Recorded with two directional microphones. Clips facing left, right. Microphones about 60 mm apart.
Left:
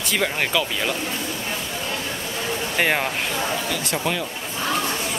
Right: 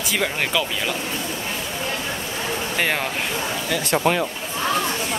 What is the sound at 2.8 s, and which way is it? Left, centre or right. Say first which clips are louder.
Speech: left 2 dB; centre.